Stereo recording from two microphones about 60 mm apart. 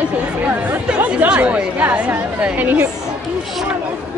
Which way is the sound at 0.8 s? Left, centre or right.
Centre.